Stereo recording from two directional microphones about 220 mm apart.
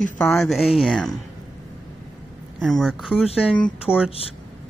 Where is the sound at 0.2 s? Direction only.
Centre (ahead or behind).